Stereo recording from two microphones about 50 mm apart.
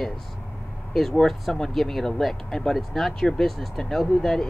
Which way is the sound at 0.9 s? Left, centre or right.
Centre.